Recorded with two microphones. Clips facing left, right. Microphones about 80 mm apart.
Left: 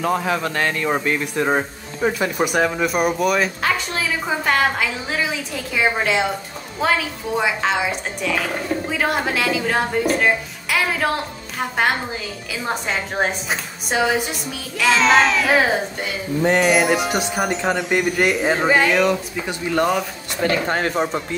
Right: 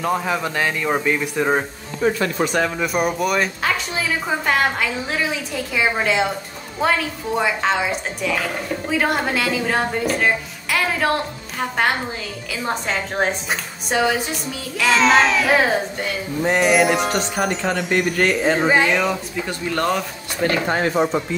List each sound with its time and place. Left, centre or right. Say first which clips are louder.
0.0 s speech: left 1 dB; centre
2.0 s speech: even; centre
12.6 s speech: even; centre
19.4 s speech: left 2 dB; centre
20.7 s speech: right 2 dB; left